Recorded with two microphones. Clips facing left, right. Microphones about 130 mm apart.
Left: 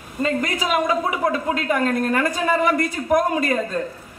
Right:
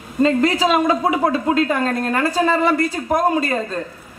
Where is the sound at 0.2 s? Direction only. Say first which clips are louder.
Right 7 dB; 30° right (ahead or behind).